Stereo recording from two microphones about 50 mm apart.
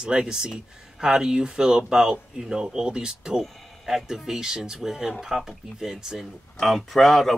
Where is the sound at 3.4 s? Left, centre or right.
Centre.